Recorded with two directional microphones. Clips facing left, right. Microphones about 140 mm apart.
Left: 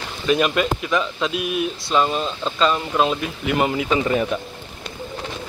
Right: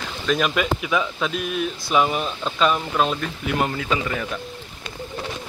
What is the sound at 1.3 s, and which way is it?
Speech, 10° left (ahead or behind).